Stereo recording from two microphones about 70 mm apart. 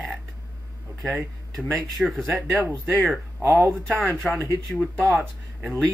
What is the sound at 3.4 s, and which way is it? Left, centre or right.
Speech, right.